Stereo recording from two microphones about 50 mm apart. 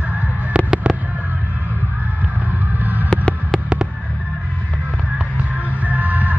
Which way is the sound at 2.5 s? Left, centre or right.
Right.